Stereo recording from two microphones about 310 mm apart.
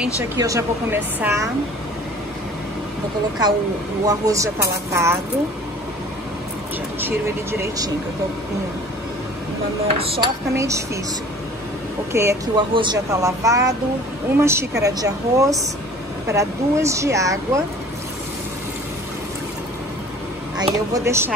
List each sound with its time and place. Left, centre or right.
0.0 s speech: centre
4.0 s speech: centre
7.0 s speech: centre
9.9 s speech: centre
12.1 s speech: centre
20.5 s speech: centre